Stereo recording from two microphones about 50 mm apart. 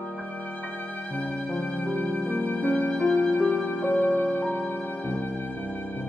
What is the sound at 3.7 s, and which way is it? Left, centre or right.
Music, left.